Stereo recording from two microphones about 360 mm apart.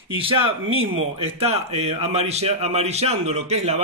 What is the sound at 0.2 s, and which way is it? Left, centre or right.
Speech, centre.